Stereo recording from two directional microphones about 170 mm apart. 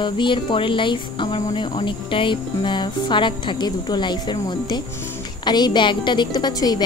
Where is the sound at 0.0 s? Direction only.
30° left (ahead or behind).